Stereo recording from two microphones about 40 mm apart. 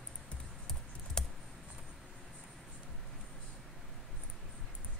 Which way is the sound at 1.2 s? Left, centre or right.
Centre.